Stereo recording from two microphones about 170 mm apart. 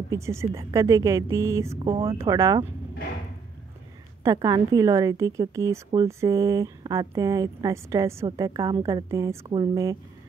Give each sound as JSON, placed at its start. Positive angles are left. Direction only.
{"t": 0.1, "sound": "a woman's voice", "side_deg": -15}
{"t": 1.9, "sound": "speech", "side_deg": -35}
{"t": 2.1, "sound": "a woman's voice", "side_deg": -20}
{"t": 4.2, "sound": "a woman's voice", "side_deg": -20}